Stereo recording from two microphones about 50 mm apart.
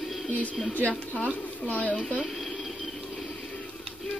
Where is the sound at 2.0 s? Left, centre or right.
Centre.